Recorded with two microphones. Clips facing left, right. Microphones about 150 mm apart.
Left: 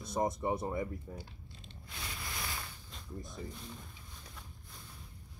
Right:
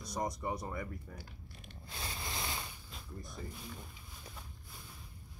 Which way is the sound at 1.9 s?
35° right (ahead or behind).